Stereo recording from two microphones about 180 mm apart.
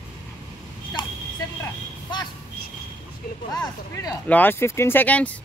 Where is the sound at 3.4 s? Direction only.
20° left (ahead or behind).